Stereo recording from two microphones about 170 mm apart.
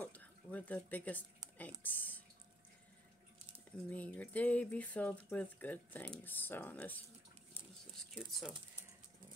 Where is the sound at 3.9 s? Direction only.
10° left (ahead or behind).